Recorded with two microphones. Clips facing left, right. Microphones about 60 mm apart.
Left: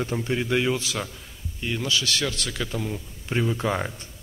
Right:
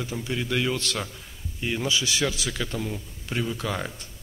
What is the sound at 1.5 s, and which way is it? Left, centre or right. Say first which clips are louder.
A man's voice: even; centre.